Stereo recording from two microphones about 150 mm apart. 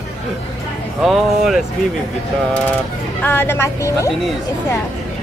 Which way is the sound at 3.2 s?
15° left (ahead or behind).